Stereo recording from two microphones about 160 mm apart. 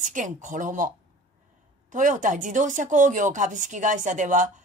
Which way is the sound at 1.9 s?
50° right (ahead or behind).